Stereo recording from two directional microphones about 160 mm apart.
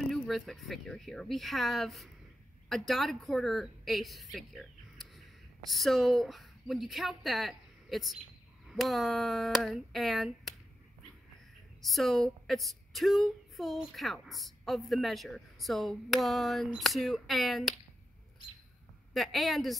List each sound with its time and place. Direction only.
0.1 s a woman's voice: centre (ahead or behind)
11.8 s a woman's voice: centre (ahead or behind)
19.1 s a woman's voice: centre (ahead or behind)